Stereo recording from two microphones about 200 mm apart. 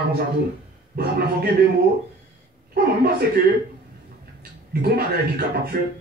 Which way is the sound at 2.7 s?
50° right (ahead or behind).